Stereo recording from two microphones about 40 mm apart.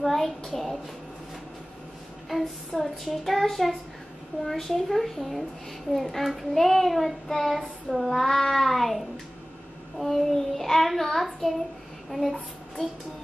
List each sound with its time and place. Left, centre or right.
0.0 s a sound: centre
0.5 s a child's voice: centre
2.2 s child singing: centre
4.5 s a child's voice: centre
8.1 s a child's voice: centre
10.0 s child singing: centre
12.1 s a child's voice: centre